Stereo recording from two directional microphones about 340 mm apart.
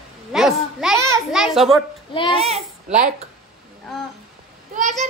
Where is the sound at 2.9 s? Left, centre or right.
Right.